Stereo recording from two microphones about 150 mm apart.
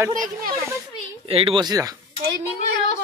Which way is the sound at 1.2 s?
40° right (ahead or behind).